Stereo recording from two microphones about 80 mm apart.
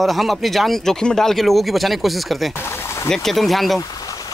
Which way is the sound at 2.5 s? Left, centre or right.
Left.